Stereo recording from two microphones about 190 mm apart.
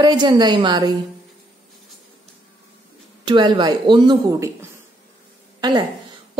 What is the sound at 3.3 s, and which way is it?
A woman's voice, 25° right (ahead or behind).